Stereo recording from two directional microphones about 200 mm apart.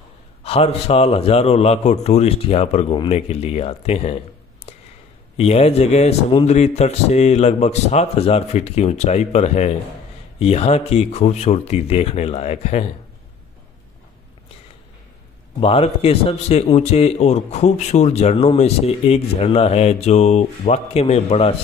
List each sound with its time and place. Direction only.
0.4 s a man's voice: 30° left (ahead or behind)
5.4 s a man's voice: 30° left (ahead or behind)
15.6 s a man's voice: 30° left (ahead or behind)